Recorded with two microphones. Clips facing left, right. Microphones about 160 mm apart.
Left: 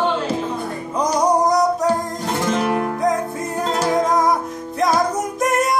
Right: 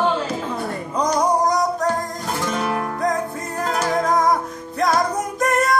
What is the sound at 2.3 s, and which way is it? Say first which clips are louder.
Music: left 4 dB; 25° left (ahead or behind).